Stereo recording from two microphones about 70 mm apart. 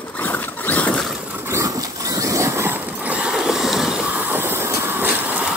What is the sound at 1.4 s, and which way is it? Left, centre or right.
Dog, right.